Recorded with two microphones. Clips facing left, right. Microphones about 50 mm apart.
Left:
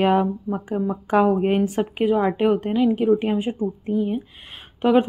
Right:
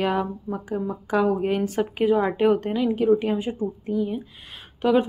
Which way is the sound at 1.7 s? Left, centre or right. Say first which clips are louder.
Left 1 dB; centre.